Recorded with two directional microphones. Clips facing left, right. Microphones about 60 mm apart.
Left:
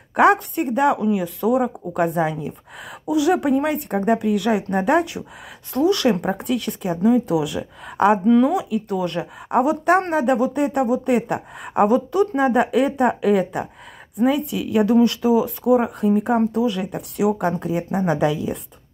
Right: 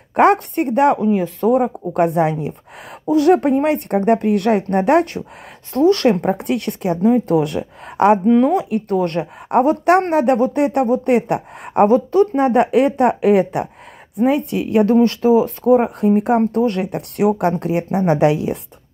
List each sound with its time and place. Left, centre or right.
0.1 s speech: right
1.0 s speech: right
5.7 s speech: right
6.3 s speech: right
7.0 s speech: right
8.3 s speech: right
8.5 s speech: right
12.4 s speech: right
14.4 s speech: right
14.9 s a woman's voice: right